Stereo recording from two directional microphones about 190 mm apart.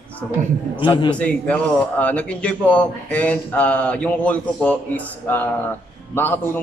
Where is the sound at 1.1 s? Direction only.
5° left (ahead or behind).